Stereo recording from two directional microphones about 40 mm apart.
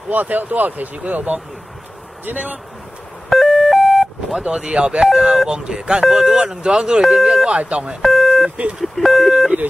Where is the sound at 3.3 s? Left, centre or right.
Centre.